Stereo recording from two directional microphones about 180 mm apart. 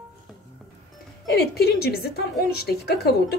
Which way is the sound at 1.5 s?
60° left (ahead or behind).